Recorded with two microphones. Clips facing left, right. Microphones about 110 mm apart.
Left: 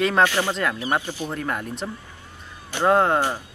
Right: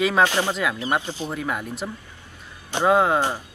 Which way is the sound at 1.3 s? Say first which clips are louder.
Even; 5° right (ahead or behind).